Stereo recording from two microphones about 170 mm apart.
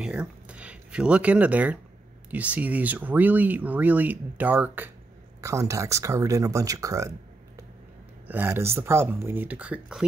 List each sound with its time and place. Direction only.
0.0 s speech: 5° right (ahead or behind)
8.3 s speech: 10° right (ahead or behind)